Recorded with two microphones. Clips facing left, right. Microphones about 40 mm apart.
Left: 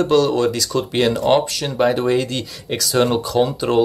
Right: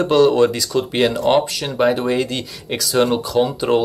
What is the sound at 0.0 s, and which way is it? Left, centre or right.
Speech, centre.